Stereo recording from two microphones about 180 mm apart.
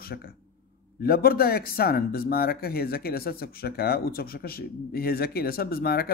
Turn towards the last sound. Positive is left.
turn(degrees=60)  # may be behind; listen again after turning